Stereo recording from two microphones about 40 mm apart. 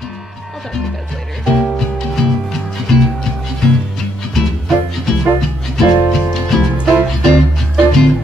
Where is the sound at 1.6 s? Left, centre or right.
Centre.